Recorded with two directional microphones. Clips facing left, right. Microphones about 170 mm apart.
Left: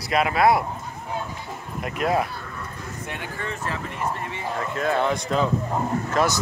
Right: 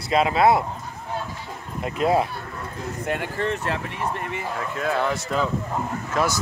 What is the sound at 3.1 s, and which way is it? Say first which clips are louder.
Speech: right 8 dB; 60° right (ahead or behind).